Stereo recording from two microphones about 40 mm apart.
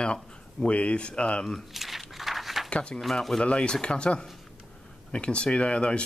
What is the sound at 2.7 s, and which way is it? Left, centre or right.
Speech, left.